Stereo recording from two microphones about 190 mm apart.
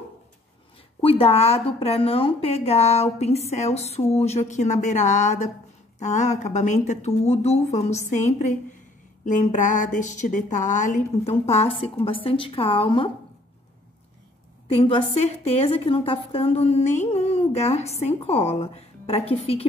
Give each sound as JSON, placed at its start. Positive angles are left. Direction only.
{"t": 1.0, "sound": "a woman's voice", "side_deg": 30}
{"t": 14.7, "sound": "a woman's voice", "side_deg": 30}